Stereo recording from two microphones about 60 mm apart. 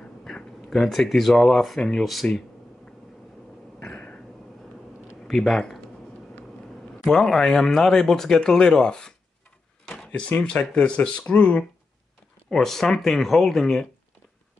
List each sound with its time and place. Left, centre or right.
0.2 s speech: centre
3.8 s a sound: centre
5.3 s speech: centre
7.1 s speech: centre
9.8 s a sound: centre
10.4 s speech: centre
12.4 s speech: centre